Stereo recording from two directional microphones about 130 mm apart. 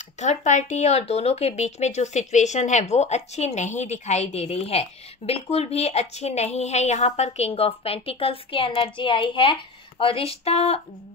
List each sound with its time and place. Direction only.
0.2 s speech: 65° left (ahead or behind)